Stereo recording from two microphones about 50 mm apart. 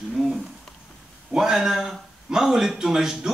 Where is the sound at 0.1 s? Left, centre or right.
Centre.